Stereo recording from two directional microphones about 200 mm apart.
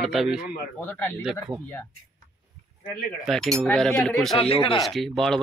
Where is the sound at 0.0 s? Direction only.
Centre (ahead or behind).